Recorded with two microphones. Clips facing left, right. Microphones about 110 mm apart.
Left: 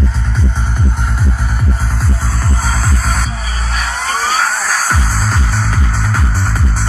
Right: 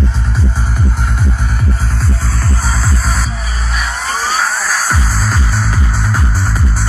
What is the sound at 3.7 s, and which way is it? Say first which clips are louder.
Music: left 1 dB; 50° left (ahead or behind).